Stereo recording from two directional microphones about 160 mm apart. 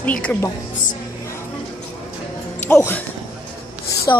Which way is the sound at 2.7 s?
10° left (ahead or behind).